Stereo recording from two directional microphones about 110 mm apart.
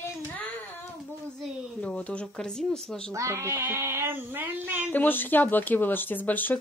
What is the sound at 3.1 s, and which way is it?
Speech, 30° right (ahead or behind).